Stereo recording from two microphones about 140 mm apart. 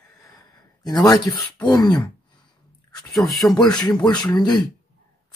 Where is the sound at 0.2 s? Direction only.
25° left (ahead or behind).